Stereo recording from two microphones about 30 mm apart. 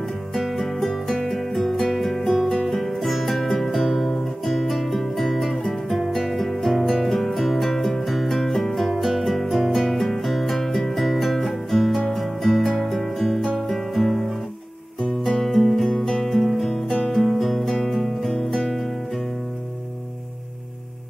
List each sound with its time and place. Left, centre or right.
0.3 s music: centre
16.9 s guitar: centre
17.9 s music: centre